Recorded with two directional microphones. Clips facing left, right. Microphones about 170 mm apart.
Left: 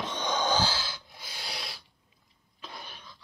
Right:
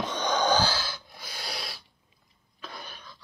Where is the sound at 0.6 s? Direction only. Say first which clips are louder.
Right 2 dB; 50° right (ahead or behind).